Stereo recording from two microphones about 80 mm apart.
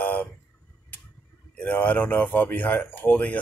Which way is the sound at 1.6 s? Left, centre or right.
Centre.